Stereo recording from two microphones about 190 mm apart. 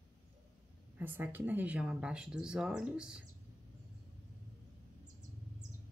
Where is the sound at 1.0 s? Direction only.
10° right (ahead or behind).